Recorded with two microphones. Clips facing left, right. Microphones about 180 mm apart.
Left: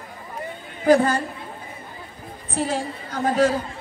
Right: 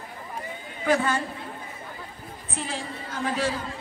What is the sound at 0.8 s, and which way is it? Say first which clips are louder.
Speech: left 7 dB; 35° left (ahead or behind).